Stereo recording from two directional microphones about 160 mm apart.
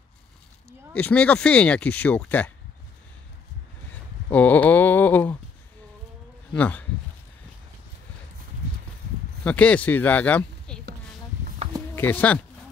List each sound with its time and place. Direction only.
0.9 s speech: 5° left (ahead or behind)
4.3 s a sound: 10° left (ahead or behind)
6.5 s speech: 10° left (ahead or behind)
9.4 s speech: 10° left (ahead or behind)
11.9 s speech: 15° left (ahead or behind)